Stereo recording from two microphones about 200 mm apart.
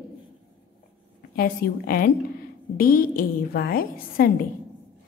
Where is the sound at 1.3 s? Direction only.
50° left (ahead or behind).